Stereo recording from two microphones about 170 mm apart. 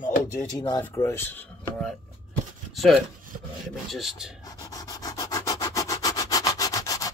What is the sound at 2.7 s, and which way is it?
Speech, centre (ahead or behind).